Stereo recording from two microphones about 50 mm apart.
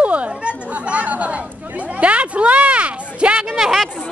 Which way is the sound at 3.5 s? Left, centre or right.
Centre.